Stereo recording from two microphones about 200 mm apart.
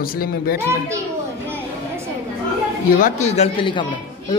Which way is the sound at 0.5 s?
15° right (ahead or behind).